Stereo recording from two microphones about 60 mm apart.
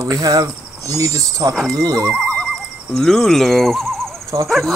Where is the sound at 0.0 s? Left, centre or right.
Right.